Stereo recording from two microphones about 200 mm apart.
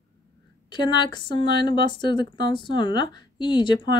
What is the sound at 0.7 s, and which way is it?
Speech, 25° left (ahead or behind).